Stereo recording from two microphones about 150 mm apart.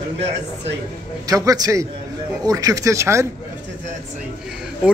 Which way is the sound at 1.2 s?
25° right (ahead or behind).